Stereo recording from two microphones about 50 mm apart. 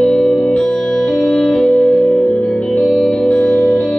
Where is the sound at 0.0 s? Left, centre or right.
Centre.